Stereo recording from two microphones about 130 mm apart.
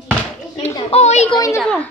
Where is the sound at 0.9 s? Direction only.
60° left (ahead or behind).